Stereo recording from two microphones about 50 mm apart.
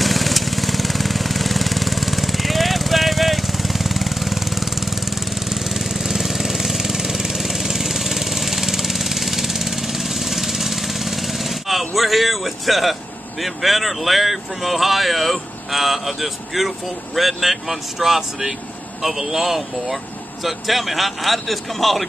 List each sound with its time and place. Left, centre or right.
0.0 s vehicle: centre
13.4 s speech: centre